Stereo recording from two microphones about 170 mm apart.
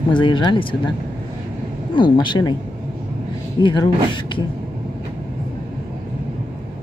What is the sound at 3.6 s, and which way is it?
Speech, 25° left (ahead or behind).